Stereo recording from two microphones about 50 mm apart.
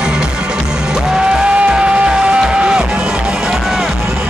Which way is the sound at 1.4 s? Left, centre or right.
Right.